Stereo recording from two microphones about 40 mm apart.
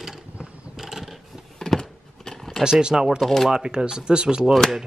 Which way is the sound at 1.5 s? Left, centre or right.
Centre.